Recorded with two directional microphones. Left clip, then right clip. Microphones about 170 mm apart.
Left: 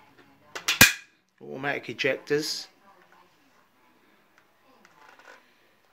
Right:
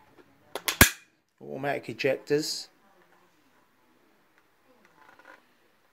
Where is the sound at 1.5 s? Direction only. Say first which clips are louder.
Left 1 dB; 30° right (ahead or behind).